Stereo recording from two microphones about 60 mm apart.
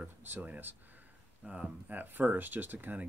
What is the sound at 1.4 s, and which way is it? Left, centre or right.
Speech, right.